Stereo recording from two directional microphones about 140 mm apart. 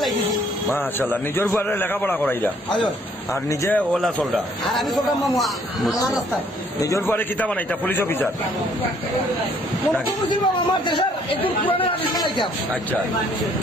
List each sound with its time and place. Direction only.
1.7 s a man's voice: 15° left (ahead or behind)
3.9 s a man's voice: centre (ahead or behind)
6.8 s a man's voice: 20° left (ahead or behind)
10.3 s speech: 30° left (ahead or behind)